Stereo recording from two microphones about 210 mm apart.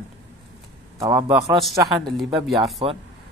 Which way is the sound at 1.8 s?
Centre (ahead or behind).